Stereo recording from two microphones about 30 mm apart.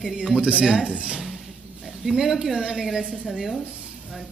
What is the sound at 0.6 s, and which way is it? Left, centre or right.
Speech, centre.